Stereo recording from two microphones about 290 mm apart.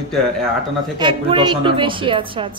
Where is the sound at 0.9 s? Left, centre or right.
Centre.